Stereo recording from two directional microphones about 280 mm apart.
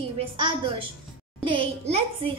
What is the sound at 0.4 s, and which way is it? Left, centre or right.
A woman's voice, centre.